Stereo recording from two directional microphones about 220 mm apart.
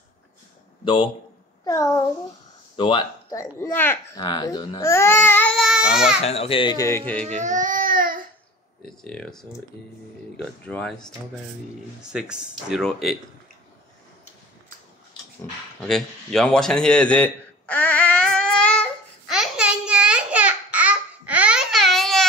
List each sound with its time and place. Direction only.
0.8 s a child's voice: 25° left (ahead or behind); by 6.1 s 5° right (ahead or behind)
6.2 s speech: 25° left (ahead or behind); by 7.2 s 10° left (ahead or behind)
7.2 s baby cry: 35° right (ahead or behind)
8.8 s speech: 5° left (ahead or behind)
12.0 s speech: 5° right (ahead or behind)
15.8 s a sound: 5° left (ahead or behind)